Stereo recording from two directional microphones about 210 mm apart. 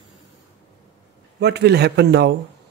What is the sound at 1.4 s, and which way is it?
Speech, 50° right (ahead or behind).